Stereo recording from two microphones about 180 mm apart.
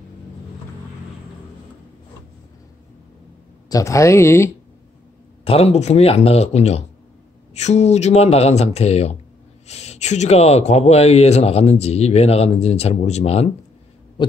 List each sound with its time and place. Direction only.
3.6 s speech: 20° left (ahead or behind)
5.4 s speech: 35° left (ahead or behind)